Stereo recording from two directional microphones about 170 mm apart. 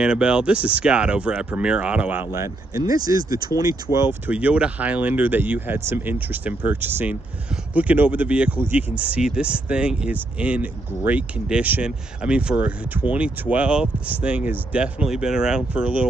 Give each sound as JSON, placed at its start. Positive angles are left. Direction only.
{"t": 0.0, "sound": "speech", "side_deg": -5}